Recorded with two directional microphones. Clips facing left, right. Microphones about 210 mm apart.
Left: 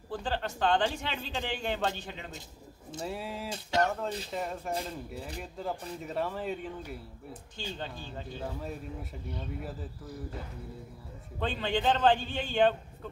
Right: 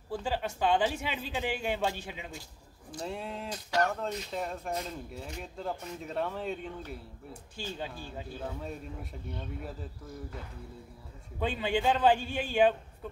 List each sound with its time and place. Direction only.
0.1 s speech: 10° right (ahead or behind)
3.0 s speech: 5° left (ahead or behind)
3.4 s speech: 25° left (ahead or behind)
4.3 s speech: 5° left (ahead or behind)
7.5 s speech: 10° right (ahead or behind)
8.5 s speech: 5° left (ahead or behind)
11.3 s speech: 10° right (ahead or behind)